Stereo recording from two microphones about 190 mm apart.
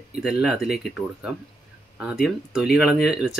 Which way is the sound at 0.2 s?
5° right (ahead or behind).